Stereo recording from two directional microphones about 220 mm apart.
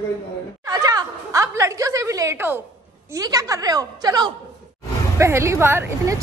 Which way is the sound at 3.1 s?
15° right (ahead or behind).